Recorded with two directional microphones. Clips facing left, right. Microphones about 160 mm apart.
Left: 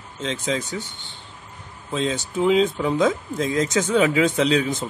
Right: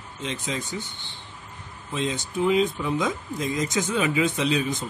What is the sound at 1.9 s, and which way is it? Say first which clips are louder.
Speech: left 3 dB; 90° left.